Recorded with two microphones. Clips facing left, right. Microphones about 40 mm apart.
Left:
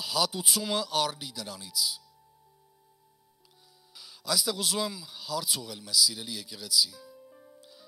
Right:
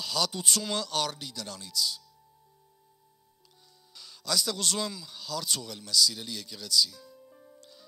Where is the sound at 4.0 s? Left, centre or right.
Centre.